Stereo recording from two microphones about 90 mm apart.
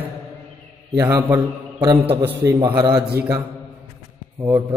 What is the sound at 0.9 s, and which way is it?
A man's voice, 30° right (ahead or behind).